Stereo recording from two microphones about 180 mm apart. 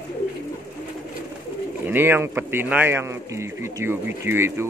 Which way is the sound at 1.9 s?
10° right (ahead or behind).